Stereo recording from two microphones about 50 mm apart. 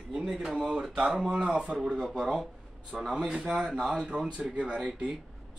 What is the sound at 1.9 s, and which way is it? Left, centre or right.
Speech, centre.